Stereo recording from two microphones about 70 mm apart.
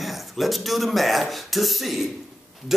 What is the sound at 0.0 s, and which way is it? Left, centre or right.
A man's voice, centre.